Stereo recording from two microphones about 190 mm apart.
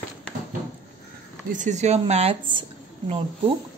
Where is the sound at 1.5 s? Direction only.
40° right (ahead or behind).